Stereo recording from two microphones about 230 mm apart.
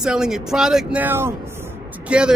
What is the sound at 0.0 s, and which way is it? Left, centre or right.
Speech, centre.